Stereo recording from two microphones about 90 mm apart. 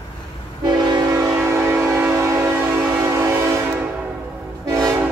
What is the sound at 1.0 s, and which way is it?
Train, 30° right (ahead or behind).